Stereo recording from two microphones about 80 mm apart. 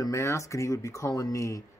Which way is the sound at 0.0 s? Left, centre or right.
Left.